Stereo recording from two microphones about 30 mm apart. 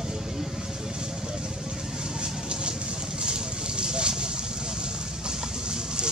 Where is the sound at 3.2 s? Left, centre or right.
Right.